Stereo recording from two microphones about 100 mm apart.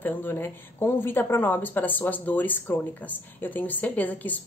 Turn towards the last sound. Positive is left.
turn(degrees=15)  # may be behind; listen again after turning